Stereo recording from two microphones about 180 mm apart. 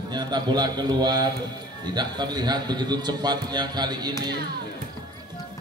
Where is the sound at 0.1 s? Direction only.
25° right (ahead or behind).